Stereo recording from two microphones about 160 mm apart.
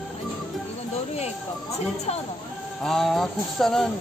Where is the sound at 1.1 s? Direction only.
40° left (ahead or behind).